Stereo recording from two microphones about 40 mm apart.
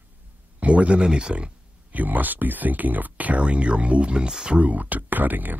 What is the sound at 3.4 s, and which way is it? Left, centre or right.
Speech, right.